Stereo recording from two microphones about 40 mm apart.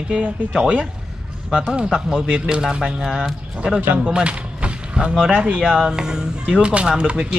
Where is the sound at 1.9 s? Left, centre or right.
Centre.